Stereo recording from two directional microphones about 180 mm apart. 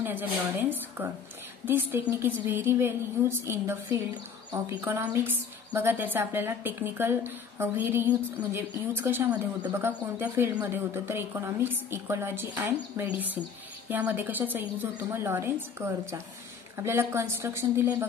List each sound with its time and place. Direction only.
0.0 s speech: 10° right (ahead or behind)